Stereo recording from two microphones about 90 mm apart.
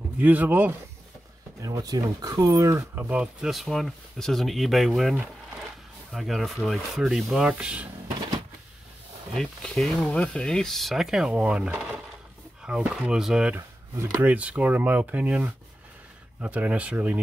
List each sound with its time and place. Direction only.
0.2 s speech: 20° right (ahead or behind)
1.6 s speech: 45° right (ahead or behind)
3.0 s speech: 15° right (ahead or behind)
6.1 s speech: centre (ahead or behind)
7.4 s speech: 10° right (ahead or behind)
9.3 s speech: 5° left (ahead or behind); by 17.2 s 15° right (ahead or behind)